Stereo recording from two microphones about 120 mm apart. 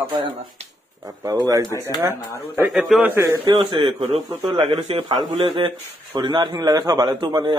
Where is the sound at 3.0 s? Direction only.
20° right (ahead or behind).